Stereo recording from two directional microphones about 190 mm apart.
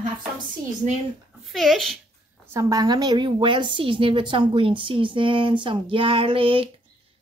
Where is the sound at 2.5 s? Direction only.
20° right (ahead or behind).